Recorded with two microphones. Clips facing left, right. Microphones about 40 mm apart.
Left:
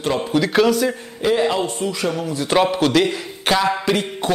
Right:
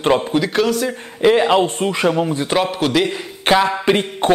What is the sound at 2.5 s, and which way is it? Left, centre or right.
Speech, centre.